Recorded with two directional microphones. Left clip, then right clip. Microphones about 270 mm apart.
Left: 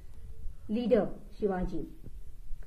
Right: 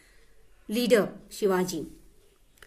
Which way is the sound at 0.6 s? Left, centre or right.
Right.